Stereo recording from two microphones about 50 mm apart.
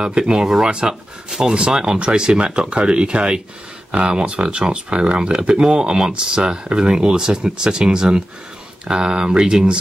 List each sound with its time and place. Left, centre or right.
0.0 s speech: centre